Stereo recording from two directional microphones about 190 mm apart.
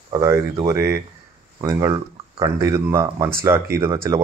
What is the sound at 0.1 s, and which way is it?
Speech, 15° right (ahead or behind).